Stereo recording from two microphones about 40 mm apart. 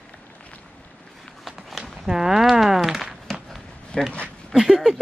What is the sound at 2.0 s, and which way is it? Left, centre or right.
Speech, centre.